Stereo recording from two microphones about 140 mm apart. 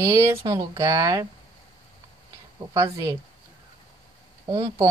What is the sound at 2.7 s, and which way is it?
Speech, 20° right (ahead or behind).